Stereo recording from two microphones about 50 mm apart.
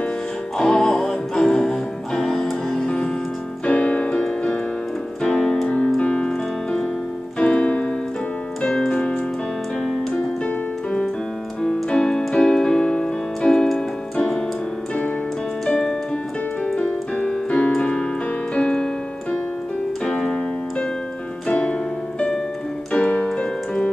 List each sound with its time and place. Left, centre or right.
0.6 s music: centre
3.6 s keyboard: left
8.6 s piano: centre
8.9 s music: centre
10.1 s keyboard: centre
17.2 s keyboard: centre
20.1 s keyboard: centre
21.5 s piano: left
22.9 s keyboard: left